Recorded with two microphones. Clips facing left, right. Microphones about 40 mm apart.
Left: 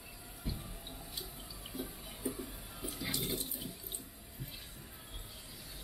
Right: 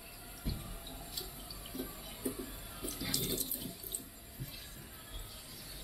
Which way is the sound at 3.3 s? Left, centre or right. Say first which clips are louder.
Even; centre.